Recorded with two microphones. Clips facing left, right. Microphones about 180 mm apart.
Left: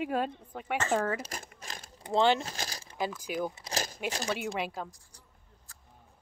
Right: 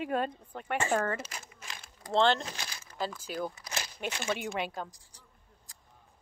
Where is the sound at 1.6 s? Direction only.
40° left (ahead or behind).